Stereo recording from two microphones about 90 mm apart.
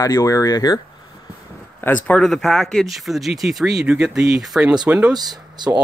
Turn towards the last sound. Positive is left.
turn(degrees=-55)  # may be behind; listen again after turning